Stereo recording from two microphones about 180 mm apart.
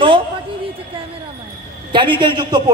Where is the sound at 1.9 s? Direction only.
25° right (ahead or behind).